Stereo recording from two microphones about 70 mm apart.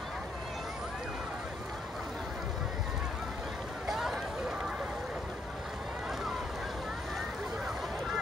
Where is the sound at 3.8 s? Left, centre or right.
Centre.